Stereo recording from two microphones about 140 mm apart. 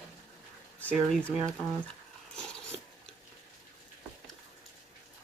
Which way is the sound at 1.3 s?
15° right (ahead or behind).